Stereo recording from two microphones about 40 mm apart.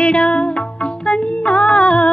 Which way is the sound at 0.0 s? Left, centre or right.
Left.